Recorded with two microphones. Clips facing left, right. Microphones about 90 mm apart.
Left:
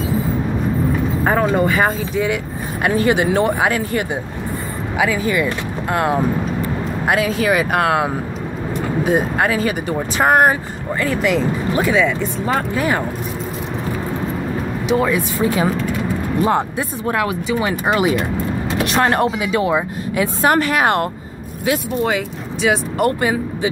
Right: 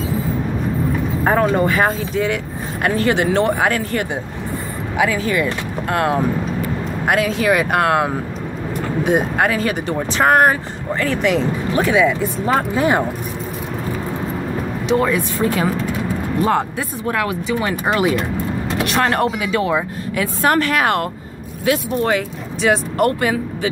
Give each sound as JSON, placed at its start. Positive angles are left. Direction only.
{"t": 1.2, "sound": "speech", "side_deg": 0}
{"t": 12.7, "sound": "speech", "side_deg": -25}
{"t": 14.9, "sound": "speech", "side_deg": 5}
{"t": 16.4, "sound": "speech", "side_deg": 20}
{"t": 22.0, "sound": "speech", "side_deg": 5}
{"t": 23.0, "sound": "speech", "side_deg": 20}